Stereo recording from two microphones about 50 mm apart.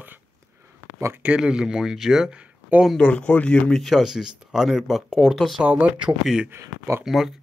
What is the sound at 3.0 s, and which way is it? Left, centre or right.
Speech, left.